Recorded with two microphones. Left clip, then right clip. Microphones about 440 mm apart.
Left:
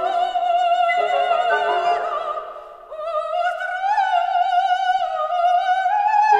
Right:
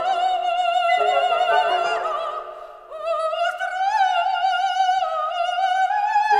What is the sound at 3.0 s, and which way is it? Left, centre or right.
Opera, right.